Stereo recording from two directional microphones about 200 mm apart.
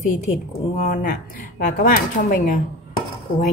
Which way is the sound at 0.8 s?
40° left (ahead or behind).